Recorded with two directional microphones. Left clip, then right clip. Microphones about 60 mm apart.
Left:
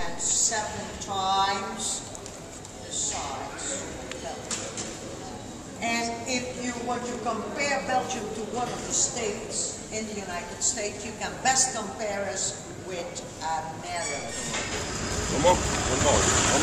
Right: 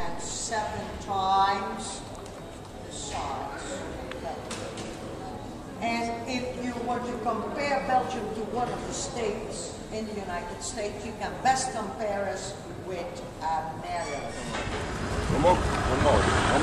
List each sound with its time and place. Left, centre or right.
0.0 s a sound: centre
5.8 s a sound: centre
6.2 s a woman's voice: centre
10.3 s a woman's voice: centre
12.9 s a woman's voice: centre
15.0 s speech: left